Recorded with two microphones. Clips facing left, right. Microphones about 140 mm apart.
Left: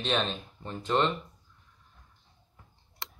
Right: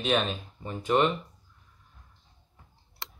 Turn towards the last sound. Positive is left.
turn(degrees=0)  # may be behind; listen again after turning